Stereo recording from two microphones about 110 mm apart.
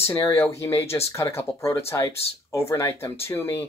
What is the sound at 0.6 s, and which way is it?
Speech, 25° left (ahead or behind).